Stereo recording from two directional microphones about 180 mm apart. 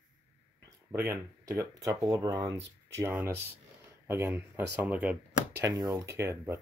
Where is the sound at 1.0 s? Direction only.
15° right (ahead or behind).